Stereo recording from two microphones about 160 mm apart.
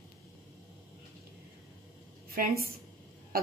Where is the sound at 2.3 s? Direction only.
65° right (ahead or behind).